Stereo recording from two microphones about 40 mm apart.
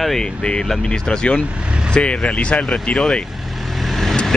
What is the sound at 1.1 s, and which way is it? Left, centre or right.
Speech, left.